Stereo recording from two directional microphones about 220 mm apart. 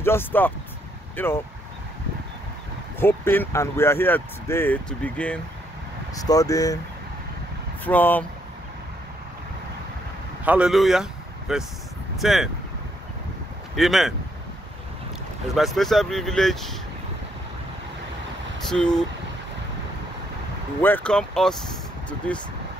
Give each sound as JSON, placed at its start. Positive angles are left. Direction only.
{"t": 0.0, "sound": "speech", "side_deg": 10}
{"t": 3.0, "sound": "speech", "side_deg": 10}
{"t": 7.8, "sound": "speech", "side_deg": 10}
{"t": 10.4, "sound": "speech", "side_deg": -5}
{"t": 13.7, "sound": "speech", "side_deg": 0}
{"t": 15.5, "sound": "speech", "side_deg": 0}
{"t": 18.7, "sound": "speech", "side_deg": 5}
{"t": 20.8, "sound": "speech", "side_deg": 5}